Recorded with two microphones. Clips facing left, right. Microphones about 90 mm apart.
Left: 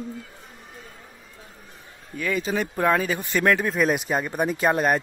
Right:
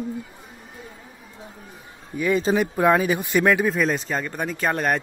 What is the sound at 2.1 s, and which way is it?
Speech, 20° right (ahead or behind).